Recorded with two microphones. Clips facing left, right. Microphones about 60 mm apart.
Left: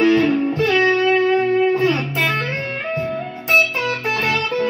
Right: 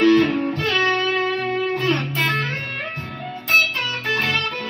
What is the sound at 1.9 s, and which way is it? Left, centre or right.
Music, left.